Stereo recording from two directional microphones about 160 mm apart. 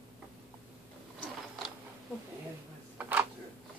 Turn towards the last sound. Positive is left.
turn(degrees=-10)  # may be behind; listen again after turning